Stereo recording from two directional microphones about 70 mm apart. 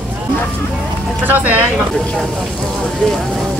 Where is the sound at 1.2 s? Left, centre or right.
Right.